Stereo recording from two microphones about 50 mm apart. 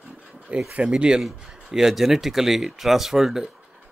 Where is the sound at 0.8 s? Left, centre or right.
Centre.